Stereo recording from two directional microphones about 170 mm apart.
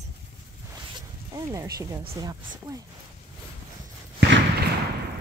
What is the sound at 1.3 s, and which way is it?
Speech, 20° right (ahead or behind).